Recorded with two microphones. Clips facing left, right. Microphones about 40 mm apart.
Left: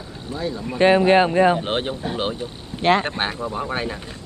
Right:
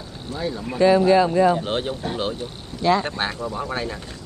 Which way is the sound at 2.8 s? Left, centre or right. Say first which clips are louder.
Left 1 dB; left.